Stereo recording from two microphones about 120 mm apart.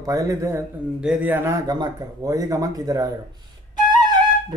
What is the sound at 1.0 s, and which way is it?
Speech, 10° right (ahead or behind).